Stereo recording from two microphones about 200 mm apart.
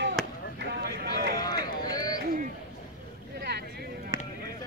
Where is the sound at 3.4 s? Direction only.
55° right (ahead or behind).